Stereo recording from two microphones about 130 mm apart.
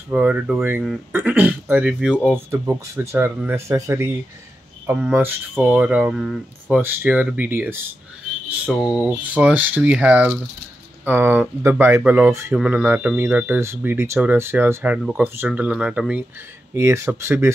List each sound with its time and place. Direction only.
0.1 s speech: 15° right (ahead or behind)
2.3 s speech: 20° right (ahead or behind)
4.8 s speech: 10° right (ahead or behind)
6.8 s speech: 15° right (ahead or behind)
8.7 s speech: 5° right (ahead or behind); by 12.5 s 20° right (ahead or behind)
12.5 s speech: 10° right (ahead or behind)
16.7 s speech: 20° right (ahead or behind)